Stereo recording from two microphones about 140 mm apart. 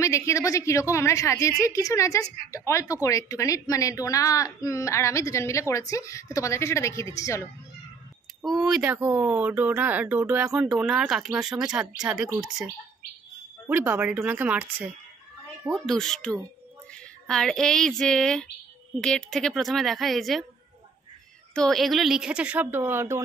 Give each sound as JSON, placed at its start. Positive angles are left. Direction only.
{"t": 0.0, "sound": "speech", "side_deg": 20}
{"t": 8.5, "sound": "a woman's voice", "side_deg": 0}
{"t": 15.9, "sound": "a woman's voice", "side_deg": 0}
{"t": 21.5, "sound": "speech", "side_deg": 0}